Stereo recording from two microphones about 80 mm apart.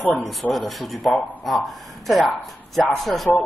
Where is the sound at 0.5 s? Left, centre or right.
Centre.